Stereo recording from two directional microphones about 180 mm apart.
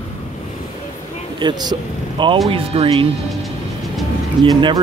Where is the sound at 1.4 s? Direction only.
25° right (ahead or behind).